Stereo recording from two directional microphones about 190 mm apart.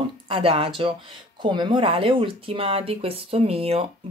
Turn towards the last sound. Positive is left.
turn(degrees=-30)  # may be behind; listen again after turning